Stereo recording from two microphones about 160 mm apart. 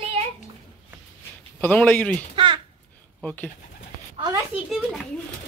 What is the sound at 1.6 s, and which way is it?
Speech, 10° left (ahead or behind).